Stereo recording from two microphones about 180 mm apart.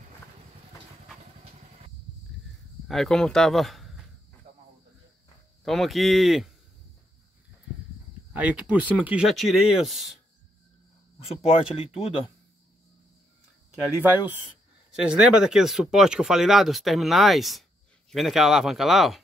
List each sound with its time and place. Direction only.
2.9 s speech: centre (ahead or behind)
5.7 s speech: centre (ahead or behind)
8.3 s speech: 5° right (ahead or behind)
11.1 s speech: 30° left (ahead or behind)
14.9 s speech: 5° right (ahead or behind)